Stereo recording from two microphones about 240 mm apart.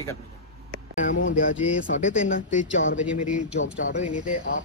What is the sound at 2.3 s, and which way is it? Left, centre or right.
Speech, left.